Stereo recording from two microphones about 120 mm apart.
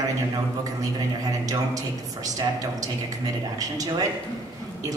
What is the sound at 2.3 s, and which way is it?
A woman's voice, 30° right (ahead or behind).